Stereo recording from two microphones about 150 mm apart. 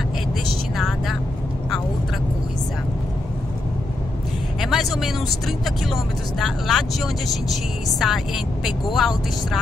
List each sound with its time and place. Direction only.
0.7 s vehicle: centre (ahead or behind)
4.6 s vehicle: centre (ahead or behind)
6.4 s a woman's voice: centre (ahead or behind)